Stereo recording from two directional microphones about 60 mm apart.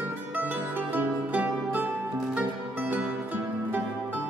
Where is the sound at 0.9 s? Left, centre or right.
Right.